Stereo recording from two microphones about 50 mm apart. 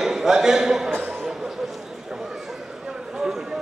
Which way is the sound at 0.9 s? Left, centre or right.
Right.